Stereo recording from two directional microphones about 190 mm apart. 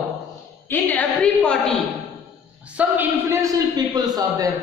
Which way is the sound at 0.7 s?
10° left (ahead or behind).